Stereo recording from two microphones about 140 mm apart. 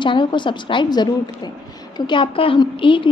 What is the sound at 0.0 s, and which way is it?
A woman's voice, 35° left (ahead or behind).